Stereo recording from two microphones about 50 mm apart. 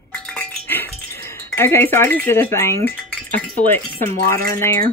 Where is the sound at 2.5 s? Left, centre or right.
Left.